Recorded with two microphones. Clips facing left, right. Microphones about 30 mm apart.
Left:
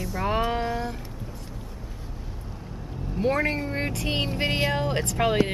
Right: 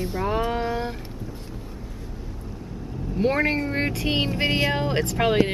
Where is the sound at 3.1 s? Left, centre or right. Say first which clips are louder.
Right 2 dB; centre.